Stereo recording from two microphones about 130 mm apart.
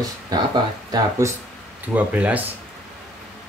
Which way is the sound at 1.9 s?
10° right (ahead or behind).